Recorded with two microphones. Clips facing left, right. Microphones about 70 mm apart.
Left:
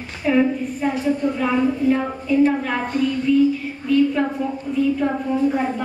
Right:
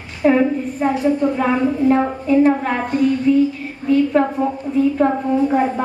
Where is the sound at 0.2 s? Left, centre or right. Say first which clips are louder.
Right 3 dB; right.